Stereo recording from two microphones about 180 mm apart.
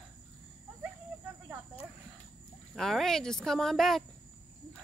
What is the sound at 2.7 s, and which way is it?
Speech, centre (ahead or behind).